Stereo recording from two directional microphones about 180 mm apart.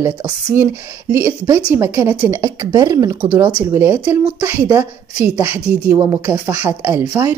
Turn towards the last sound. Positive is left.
turn(degrees=-10)  # may be behind; listen again after turning